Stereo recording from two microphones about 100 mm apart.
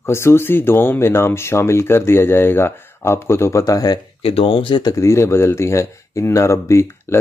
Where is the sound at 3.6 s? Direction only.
40° left (ahead or behind).